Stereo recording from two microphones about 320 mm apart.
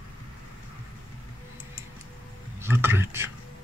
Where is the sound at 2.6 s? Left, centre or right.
Centre.